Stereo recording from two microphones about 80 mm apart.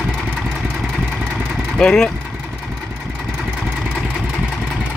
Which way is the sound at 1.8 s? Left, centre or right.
Centre.